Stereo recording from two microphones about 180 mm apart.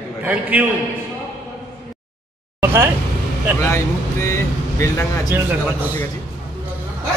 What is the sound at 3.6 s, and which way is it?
Speech, 15° left (ahead or behind).